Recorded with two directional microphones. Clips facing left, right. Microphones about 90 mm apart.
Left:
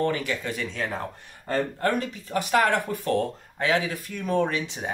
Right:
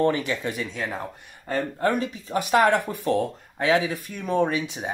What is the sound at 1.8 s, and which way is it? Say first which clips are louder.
Speech: right 2 dB; 20° right (ahead or behind).